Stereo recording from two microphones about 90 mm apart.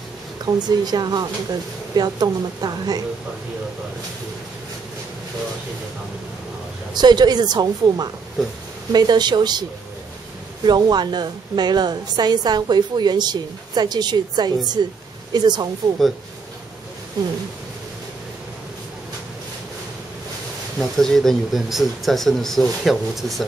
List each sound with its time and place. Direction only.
0.5 s a woman's voice: 50° right (ahead or behind)
6.9 s a woman's voice: 50° right (ahead or behind)
17.2 s a woman's voice: 45° right (ahead or behind)
20.9 s speech: 5° left (ahead or behind)